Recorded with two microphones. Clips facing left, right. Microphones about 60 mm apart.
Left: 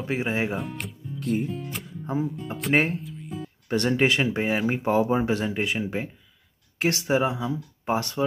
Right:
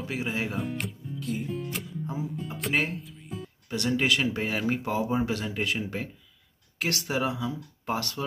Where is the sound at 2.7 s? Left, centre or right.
Left.